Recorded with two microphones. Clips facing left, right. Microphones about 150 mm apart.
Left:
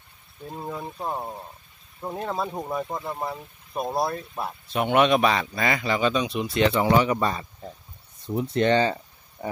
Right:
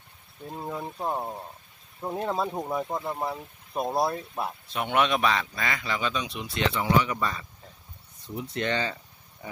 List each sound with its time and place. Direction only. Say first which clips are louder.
0.5 s speech: left 1 dB; centre (ahead or behind)
3.7 s speech: even; 20° right (ahead or behind)
4.7 s speech: left 5 dB; 5° left (ahead or behind)
6.0 s speech: left 7 dB; 40° left (ahead or behind)
8.5 s speech: left 8 dB; 30° left (ahead or behind)
9.4 s a sound: left 9 dB; 45° left (ahead or behind)